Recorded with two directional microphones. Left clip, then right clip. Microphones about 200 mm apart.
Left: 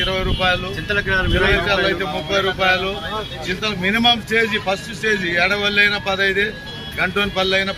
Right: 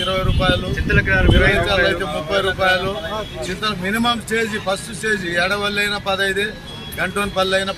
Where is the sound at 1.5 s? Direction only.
Centre (ahead or behind).